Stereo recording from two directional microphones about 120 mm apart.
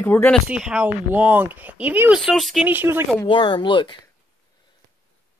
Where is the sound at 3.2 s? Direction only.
45° left (ahead or behind).